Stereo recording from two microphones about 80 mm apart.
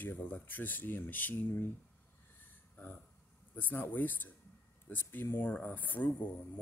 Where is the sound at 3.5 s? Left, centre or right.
Left.